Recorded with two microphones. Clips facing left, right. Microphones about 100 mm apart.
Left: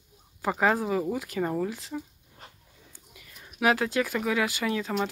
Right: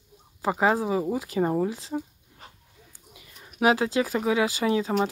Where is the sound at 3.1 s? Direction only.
25° right (ahead or behind).